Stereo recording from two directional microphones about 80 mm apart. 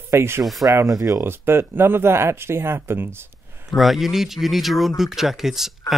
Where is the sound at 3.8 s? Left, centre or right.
Centre.